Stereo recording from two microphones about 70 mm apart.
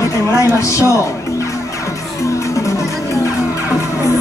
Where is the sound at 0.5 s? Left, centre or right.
Left.